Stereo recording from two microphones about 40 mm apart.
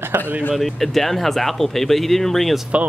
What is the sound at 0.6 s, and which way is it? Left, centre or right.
Speech, centre.